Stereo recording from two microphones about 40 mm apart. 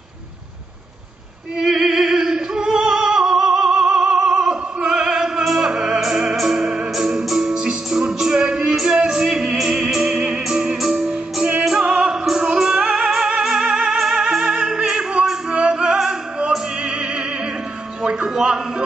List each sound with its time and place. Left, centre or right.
1.6 s opera: centre
4.8 s music: centre
14.6 s opera: centre
15.5 s music: right
16.3 s opera: right
18.0 s music: right